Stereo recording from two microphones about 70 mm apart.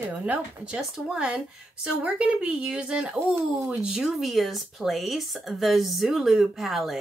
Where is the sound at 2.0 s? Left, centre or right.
Centre.